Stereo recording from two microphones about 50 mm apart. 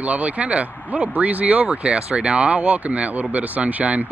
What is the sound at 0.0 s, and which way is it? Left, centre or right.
Speech, right.